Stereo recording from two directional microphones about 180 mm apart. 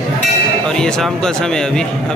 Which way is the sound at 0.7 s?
5° left (ahead or behind).